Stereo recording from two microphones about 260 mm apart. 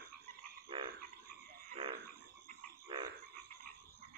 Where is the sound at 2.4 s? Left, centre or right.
Centre.